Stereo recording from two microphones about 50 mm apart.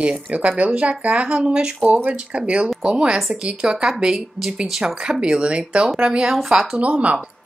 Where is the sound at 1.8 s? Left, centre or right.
Right.